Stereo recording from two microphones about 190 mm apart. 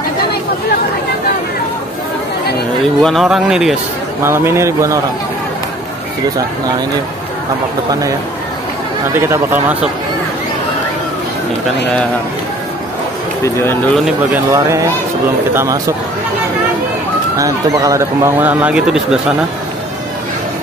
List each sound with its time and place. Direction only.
3.0 s speech: centre (ahead or behind)
4.2 s a man's voice: 15° right (ahead or behind)
9.1 s a man's voice: 10° right (ahead or behind)
13.4 s speech: 10° left (ahead or behind)
13.9 s speech: centre (ahead or behind)
14.5 s a man's voice: 15° right (ahead or behind)
17.4 s a man's voice: 20° right (ahead or behind)